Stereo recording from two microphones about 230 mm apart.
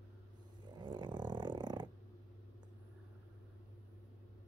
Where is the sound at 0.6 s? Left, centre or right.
Centre.